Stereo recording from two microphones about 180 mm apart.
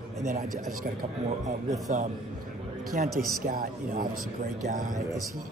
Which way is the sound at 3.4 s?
50° right (ahead or behind).